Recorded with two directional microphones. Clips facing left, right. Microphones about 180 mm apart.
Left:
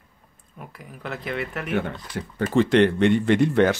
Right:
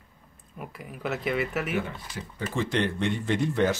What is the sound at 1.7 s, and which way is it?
Speech, 60° left (ahead or behind).